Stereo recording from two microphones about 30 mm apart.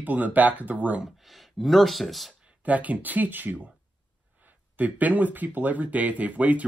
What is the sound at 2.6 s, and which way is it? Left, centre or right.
Speech, right.